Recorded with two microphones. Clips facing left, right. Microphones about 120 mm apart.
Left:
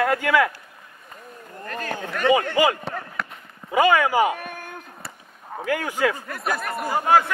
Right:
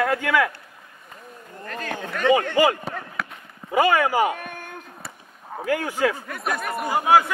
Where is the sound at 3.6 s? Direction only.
10° right (ahead or behind).